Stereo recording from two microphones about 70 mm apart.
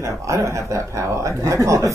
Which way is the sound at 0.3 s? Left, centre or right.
Right.